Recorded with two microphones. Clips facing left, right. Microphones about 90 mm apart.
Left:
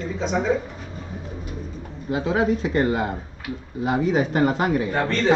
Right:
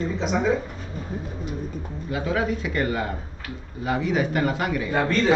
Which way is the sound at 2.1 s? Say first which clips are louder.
Left 4 dB; 30° left (ahead or behind).